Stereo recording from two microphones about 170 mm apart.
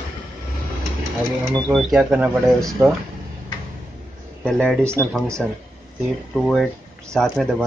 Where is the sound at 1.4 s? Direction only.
Centre (ahead or behind).